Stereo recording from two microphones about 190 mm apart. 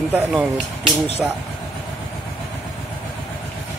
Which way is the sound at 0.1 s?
5° right (ahead or behind).